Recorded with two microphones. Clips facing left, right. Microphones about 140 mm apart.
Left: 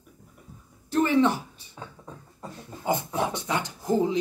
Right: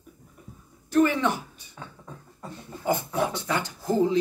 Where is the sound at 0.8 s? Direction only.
25° left (ahead or behind).